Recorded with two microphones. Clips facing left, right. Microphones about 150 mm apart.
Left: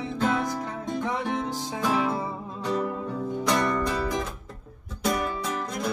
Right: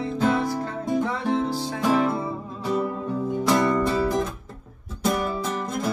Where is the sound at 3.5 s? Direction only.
5° right (ahead or behind).